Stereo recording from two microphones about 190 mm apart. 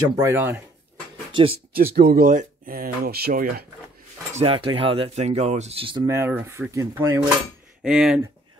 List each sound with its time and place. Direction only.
0.1 s cutlery: 15° right (ahead or behind)
1.3 s speech: 30° right (ahead or behind)
2.0 s speech: 50° right (ahead or behind)
4.4 s speech: 30° right (ahead or behind)
6.0 s cutlery: 15° right (ahead or behind)
7.8 s speech: 5° right (ahead or behind)